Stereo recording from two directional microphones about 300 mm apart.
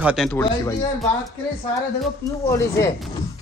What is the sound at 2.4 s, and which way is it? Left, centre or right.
Speech, centre.